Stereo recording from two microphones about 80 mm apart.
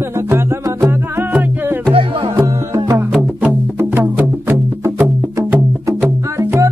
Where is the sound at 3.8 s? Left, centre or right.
Right.